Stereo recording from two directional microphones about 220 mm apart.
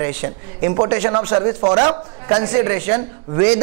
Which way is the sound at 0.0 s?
15° right (ahead or behind).